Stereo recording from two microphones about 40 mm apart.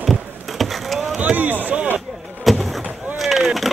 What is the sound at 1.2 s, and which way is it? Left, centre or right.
Speech, right.